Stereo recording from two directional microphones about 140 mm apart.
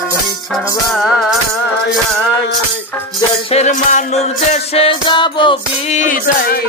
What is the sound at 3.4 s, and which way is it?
Music, 55° left (ahead or behind).